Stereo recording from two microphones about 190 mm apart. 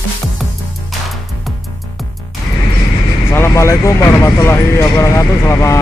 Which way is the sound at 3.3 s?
15° left (ahead or behind).